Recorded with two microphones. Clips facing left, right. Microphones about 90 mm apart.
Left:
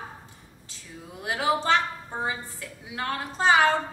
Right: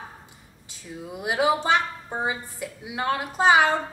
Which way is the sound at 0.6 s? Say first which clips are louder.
Right 7 dB; 15° right (ahead or behind).